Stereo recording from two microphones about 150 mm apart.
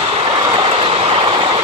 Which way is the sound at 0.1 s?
40° right (ahead or behind).